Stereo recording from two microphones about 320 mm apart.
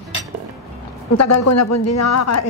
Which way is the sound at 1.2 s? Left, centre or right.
Left.